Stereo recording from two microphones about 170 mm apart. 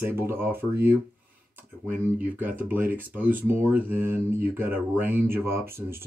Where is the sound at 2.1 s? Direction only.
10° right (ahead or behind).